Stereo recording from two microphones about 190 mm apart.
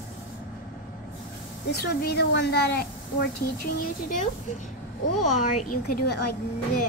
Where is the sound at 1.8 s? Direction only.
55° left (ahead or behind).